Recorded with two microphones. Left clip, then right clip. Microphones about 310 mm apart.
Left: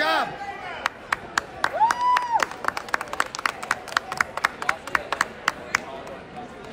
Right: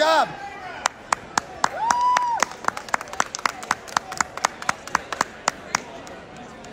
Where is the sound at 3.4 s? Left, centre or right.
Centre.